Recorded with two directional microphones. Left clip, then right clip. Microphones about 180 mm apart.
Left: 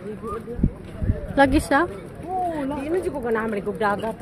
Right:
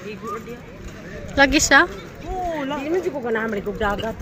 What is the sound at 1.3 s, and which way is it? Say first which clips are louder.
Speech: right 4 dB; 15° left (ahead or behind).